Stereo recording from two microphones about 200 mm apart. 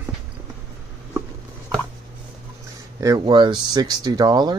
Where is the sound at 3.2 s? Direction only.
25° right (ahead or behind).